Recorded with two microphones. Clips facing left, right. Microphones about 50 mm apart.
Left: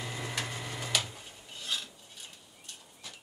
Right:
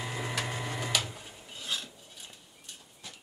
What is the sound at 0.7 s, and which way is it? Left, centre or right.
Printer, centre.